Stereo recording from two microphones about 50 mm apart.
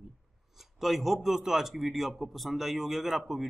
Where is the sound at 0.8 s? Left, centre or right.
Centre.